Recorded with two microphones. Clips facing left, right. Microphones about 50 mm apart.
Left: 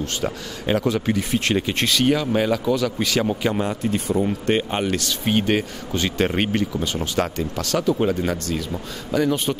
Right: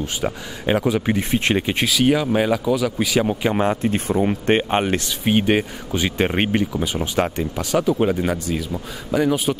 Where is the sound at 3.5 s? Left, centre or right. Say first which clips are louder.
Right 3 dB; right.